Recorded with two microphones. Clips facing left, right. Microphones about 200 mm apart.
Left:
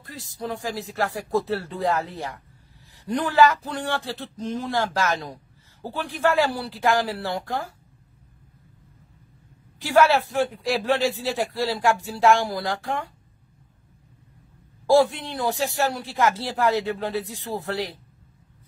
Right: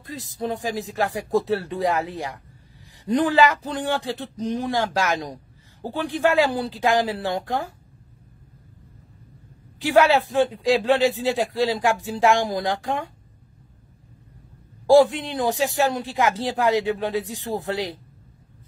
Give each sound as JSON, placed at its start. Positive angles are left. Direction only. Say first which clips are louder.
{"t": 0.0, "sound": "speech", "louder": "right 4 dB", "side_deg": -20}
{"t": 9.8, "sound": "speech", "louder": "right 1 dB", "side_deg": -15}
{"t": 14.9, "sound": "speech", "louder": "right 3 dB", "side_deg": -15}